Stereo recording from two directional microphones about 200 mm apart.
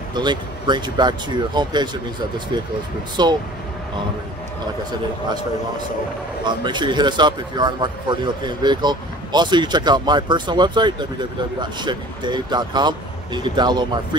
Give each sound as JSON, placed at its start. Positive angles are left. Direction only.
{"t": 0.1, "sound": "speech", "side_deg": -20}
{"t": 6.4, "sound": "speech", "side_deg": -20}